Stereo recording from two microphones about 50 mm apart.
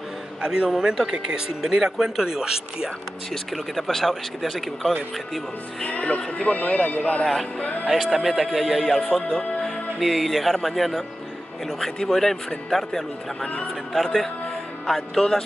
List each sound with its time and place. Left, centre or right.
0.4 s a man's voice: centre
3.7 s speech: centre
5.9 s speech: left
7.8 s speech: centre